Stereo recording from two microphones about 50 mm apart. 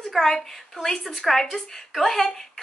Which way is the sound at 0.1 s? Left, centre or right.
Centre.